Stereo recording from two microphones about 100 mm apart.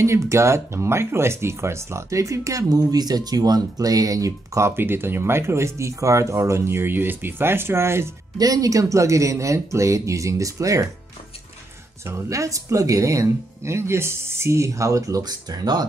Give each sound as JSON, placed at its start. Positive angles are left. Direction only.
{"t": 0.0, "sound": "speech", "side_deg": -30}
{"t": 8.4, "sound": "speech", "side_deg": -35}
{"t": 12.1, "sound": "speech", "side_deg": -30}